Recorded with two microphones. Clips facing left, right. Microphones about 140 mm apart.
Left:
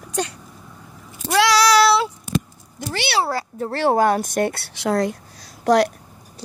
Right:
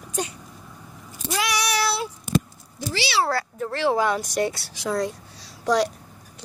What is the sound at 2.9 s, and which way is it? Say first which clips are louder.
Speech: left 3 dB; 55° left (ahead or behind).